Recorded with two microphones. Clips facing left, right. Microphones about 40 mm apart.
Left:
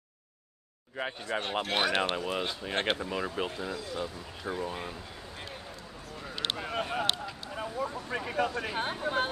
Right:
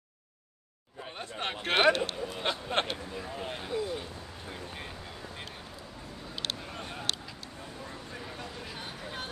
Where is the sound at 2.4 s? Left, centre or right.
Right.